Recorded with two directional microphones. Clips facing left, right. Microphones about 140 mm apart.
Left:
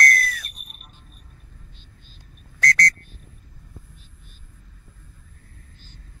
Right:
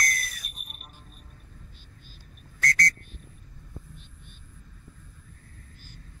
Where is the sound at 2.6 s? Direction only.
90° left.